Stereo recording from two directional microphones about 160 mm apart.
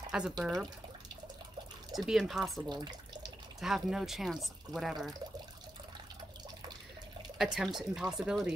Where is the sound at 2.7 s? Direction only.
25° right (ahead or behind).